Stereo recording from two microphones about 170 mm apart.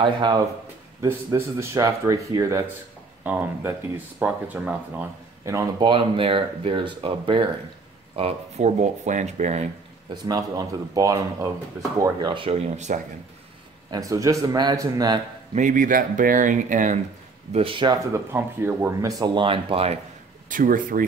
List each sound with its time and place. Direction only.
0.0 s speech: 25° right (ahead or behind)
1.0 s speech: 15° right (ahead or behind); by 10.1 s 40° right (ahead or behind)
10.2 s speech: 20° right (ahead or behind); by 13.0 s 45° right (ahead or behind)
13.8 s speech: 20° right (ahead or behind)
15.5 s speech: 50° right (ahead or behind)
17.5 s speech: 35° right (ahead or behind)
18.1 s speech: 15° right (ahead or behind); by 20.0 s 35° right (ahead or behind)
20.4 s speech: 55° right (ahead or behind)